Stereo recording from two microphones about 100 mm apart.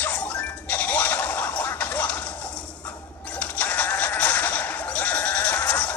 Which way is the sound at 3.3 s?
15° left (ahead or behind).